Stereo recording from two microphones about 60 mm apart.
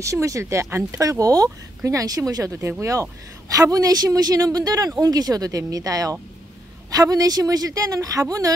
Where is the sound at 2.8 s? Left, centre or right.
Right.